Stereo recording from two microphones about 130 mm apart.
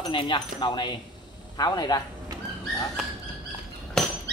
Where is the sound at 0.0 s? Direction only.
40° left (ahead or behind).